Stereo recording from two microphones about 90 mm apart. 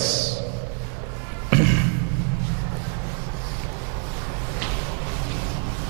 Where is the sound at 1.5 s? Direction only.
10° right (ahead or behind).